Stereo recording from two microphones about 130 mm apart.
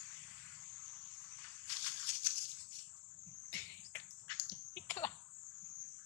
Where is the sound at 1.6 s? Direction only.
15° left (ahead or behind).